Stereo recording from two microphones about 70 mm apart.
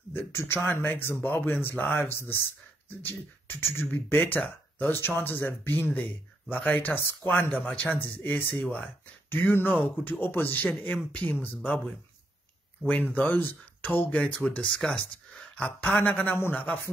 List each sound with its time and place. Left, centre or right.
0.1 s speech: left
8.5 s speech: centre